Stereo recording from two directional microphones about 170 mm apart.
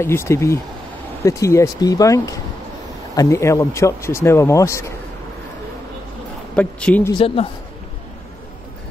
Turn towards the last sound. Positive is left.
turn(degrees=30)  # may be behind; listen again after turning